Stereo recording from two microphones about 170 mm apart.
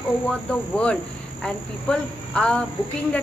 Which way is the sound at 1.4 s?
5° left (ahead or behind).